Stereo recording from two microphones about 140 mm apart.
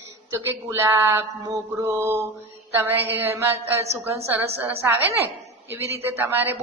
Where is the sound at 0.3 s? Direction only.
20° right (ahead or behind).